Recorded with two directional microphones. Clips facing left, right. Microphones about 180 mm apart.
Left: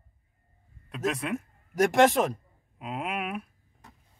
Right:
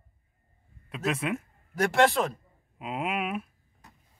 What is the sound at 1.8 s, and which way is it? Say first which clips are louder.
Speech: left 2 dB; 15° left (ahead or behind).